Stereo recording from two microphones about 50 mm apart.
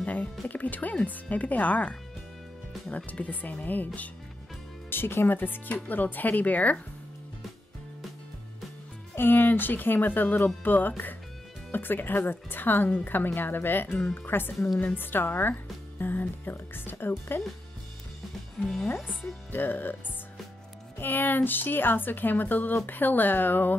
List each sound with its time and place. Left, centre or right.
0.0 s music: left
0.5 s speech: left
3.1 s speech: left
4.8 s a woman's voice: left
9.1 s a woman's voice: left
18.6 s speech: centre
19.5 s speech: left
21.0 s speech: left